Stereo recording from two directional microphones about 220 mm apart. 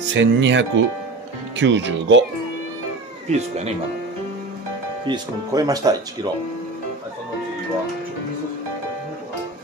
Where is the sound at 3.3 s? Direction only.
30° right (ahead or behind).